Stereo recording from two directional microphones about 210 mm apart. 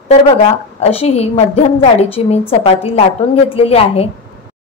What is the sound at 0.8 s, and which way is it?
Speech, 30° left (ahead or behind).